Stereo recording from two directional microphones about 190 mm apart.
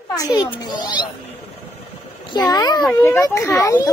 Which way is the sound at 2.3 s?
20° left (ahead or behind).